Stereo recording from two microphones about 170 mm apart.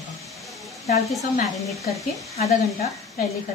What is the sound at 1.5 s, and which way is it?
Speech, centre (ahead or behind).